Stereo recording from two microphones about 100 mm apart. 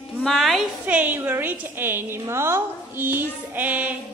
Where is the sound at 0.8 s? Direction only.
15° right (ahead or behind).